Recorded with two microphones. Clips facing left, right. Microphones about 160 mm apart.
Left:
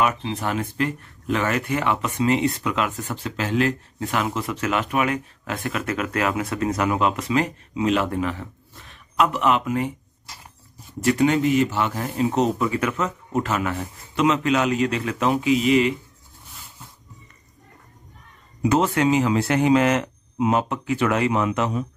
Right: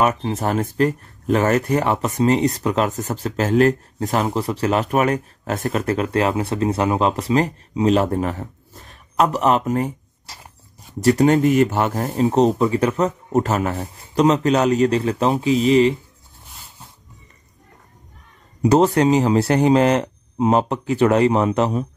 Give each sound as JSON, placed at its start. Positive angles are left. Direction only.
{"t": 0.0, "sound": "speech", "side_deg": -40}
{"t": 18.6, "sound": "speech", "side_deg": -35}